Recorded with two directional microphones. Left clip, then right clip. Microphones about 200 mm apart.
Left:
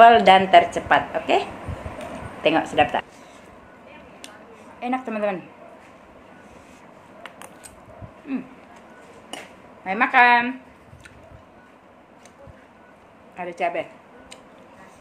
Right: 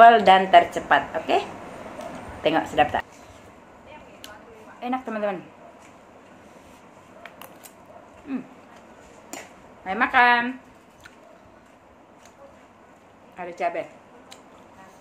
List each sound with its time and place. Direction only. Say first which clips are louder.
0.0 s a woman's voice: left 1 dB; 5° left (ahead or behind)
4.7 s a woman's voice: left 2 dB; 5° left (ahead or behind)
8.3 s a woman's voice: left 2 dB; 5° left (ahead or behind)
9.8 s a woman's voice: left 2 dB; 5° left (ahead or behind)
13.4 s a woman's voice: left 2 dB; 5° left (ahead or behind)